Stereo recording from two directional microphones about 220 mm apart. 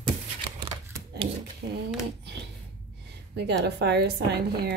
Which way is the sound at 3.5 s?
50° right (ahead or behind).